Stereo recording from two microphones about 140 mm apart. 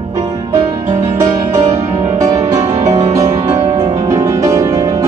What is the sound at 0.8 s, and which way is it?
Music, 55° right (ahead or behind).